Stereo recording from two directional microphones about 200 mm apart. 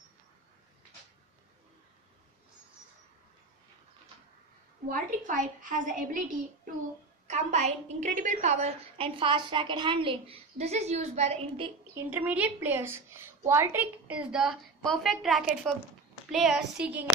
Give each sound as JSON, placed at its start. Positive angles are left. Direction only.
{"t": 4.8, "sound": "a woman's voice", "side_deg": -45}
{"t": 11.9, "sound": "a woman's voice", "side_deg": -10}